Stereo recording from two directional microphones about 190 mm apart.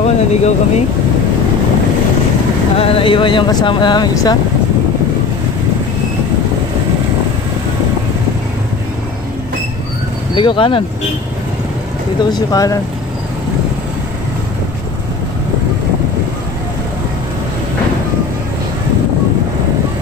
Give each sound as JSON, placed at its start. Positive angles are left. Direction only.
{"t": 0.0, "sound": "speech", "side_deg": 35}
{"t": 2.8, "sound": "speech", "side_deg": 30}
{"t": 10.3, "sound": "speech", "side_deg": 25}
{"t": 12.3, "sound": "speech", "side_deg": 20}